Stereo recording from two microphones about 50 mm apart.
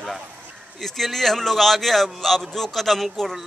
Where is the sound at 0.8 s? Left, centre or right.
Centre.